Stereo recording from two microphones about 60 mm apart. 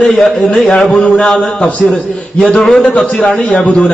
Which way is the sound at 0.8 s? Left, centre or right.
Centre.